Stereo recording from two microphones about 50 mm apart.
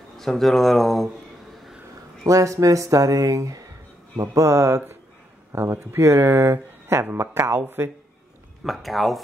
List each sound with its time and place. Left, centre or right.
0.2 s speech: centre
2.2 s speech: right
4.3 s speech: right
5.5 s speech: right
8.6 s speech: centre